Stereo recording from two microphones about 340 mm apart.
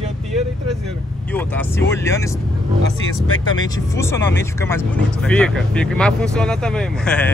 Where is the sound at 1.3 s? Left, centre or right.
Centre.